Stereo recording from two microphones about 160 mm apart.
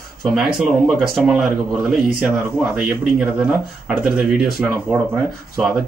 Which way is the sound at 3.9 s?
5° right (ahead or behind).